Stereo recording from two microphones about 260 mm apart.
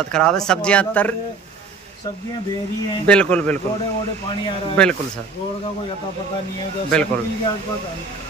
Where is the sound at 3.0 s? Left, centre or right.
Centre.